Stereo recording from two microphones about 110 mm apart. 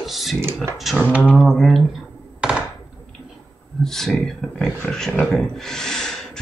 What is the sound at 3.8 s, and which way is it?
Speech, 5° left (ahead or behind).